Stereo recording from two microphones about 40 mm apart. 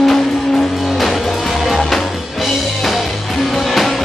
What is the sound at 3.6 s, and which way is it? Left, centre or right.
Music, centre.